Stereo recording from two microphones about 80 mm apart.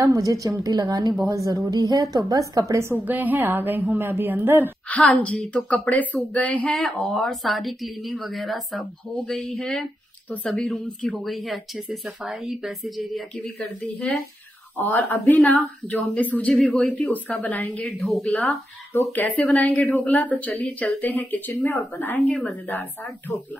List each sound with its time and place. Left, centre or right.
0.0 s a woman's voice: right
3.1 s a woman's voice: right
4.8 s speech: centre
6.7 s speech: centre
14.8 s speech: left
17.9 s speech: centre
19.1 s speech: centre